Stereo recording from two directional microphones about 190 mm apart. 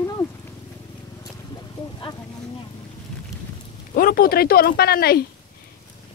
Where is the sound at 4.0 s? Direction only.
50° left (ahead or behind).